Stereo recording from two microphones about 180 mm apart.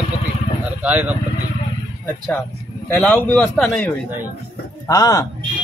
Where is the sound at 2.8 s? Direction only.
10° left (ahead or behind).